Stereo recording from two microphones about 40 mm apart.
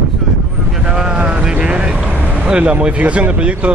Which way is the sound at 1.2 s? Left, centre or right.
Right.